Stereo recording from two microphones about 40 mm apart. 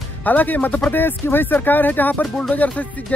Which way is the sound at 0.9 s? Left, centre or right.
Left.